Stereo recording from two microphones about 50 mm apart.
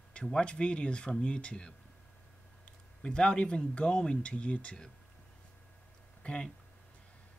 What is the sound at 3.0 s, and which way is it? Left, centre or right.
Speech, centre.